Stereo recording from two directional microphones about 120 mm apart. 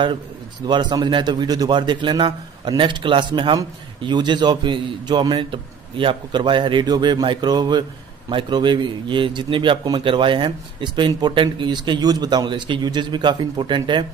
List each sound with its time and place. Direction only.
0.7 s a man's voice: 40° right (ahead or behind)